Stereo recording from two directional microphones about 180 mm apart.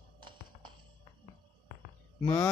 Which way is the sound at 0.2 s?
25° right (ahead or behind).